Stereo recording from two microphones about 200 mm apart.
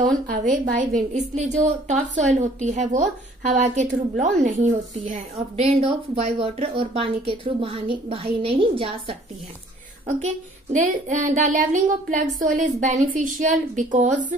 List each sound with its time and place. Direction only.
0.0 s a woman's voice: 40° right (ahead or behind)
10.2 s a woman's voice: 40° right (ahead or behind)